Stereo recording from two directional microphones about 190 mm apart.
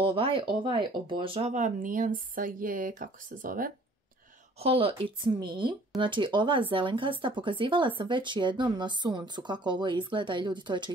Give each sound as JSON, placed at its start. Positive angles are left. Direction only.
{"t": 0.0, "sound": "speech", "side_deg": -30}
{"t": 4.6, "sound": "speech", "side_deg": -30}